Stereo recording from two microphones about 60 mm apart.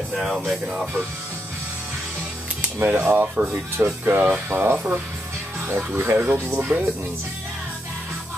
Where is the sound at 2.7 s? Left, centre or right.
Right.